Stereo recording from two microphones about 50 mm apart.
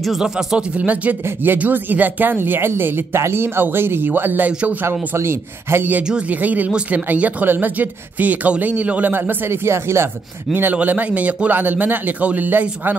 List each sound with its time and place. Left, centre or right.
0.2 s speech: centre
0.7 s speech: right
2.7 s speech: right
4.5 s a man's voice: right
4.8 s a man's voice: right
6.4 s speech: right
9.1 s a man's voice: right
10.5 s speech: right